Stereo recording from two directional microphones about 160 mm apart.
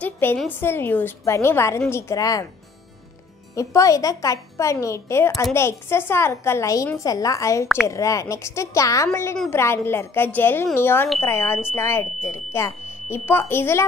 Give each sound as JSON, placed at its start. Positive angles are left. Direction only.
{"t": 0.0, "sound": "a woman's voice", "side_deg": 15}
{"t": 3.5, "sound": "a woman's voice", "side_deg": 20}
{"t": 7.6, "sound": "a woman's voice", "side_deg": -5}
{"t": 7.9, "sound": "a woman's voice", "side_deg": 20}